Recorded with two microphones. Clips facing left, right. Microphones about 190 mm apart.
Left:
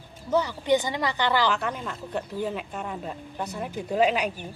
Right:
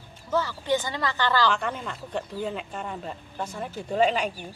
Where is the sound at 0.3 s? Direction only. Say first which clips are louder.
Left 3 dB; 20° left (ahead or behind).